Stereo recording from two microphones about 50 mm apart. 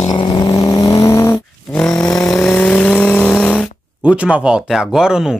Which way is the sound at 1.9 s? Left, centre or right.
Left.